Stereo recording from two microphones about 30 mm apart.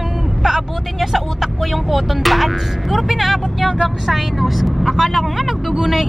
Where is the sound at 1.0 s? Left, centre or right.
Centre.